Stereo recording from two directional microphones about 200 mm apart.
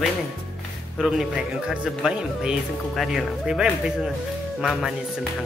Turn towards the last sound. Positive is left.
turn(degrees=0)  # may be behind; listen again after turning